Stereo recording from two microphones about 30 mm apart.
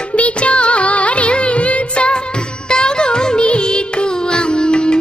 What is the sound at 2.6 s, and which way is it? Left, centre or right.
Music, left.